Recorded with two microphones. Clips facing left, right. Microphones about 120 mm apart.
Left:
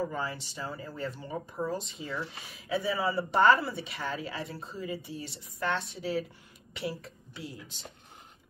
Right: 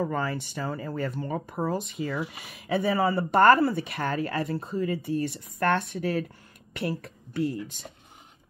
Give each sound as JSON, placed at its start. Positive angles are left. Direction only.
{"t": 0.1, "sound": "speech", "side_deg": -60}